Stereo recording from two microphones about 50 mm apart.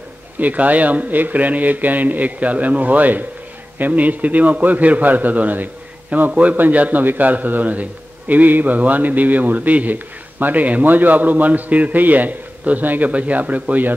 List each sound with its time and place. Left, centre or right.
0.4 s a man's voice: right